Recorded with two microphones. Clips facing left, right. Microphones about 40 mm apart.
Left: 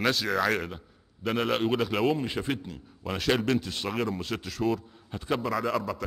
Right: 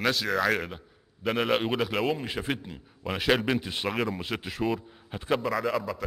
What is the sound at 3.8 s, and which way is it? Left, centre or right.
Speech, centre.